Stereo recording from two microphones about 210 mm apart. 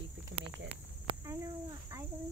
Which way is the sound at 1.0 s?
15° right (ahead or behind).